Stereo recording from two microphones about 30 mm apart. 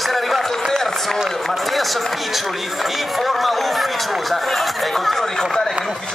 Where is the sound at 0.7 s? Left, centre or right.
Centre.